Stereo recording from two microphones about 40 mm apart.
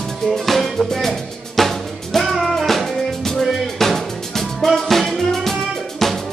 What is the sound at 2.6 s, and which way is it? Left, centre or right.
Music, centre.